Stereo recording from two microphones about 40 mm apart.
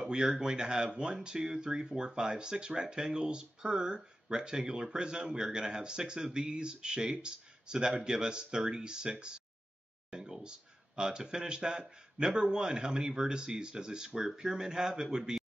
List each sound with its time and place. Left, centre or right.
0.0 s speech: centre
10.1 s speech: centre